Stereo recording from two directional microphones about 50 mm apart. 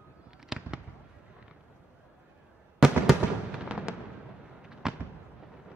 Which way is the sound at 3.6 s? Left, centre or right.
Right.